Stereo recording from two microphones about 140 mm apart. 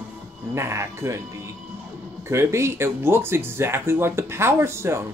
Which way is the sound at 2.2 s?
20° right (ahead or behind).